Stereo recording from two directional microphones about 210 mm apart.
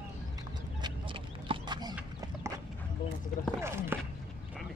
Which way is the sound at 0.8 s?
25° right (ahead or behind).